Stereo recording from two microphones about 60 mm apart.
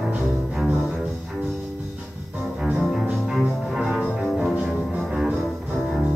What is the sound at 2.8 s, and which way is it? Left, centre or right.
Music, centre.